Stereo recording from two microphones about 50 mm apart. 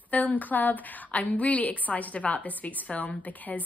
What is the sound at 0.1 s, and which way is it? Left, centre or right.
A woman's voice, left.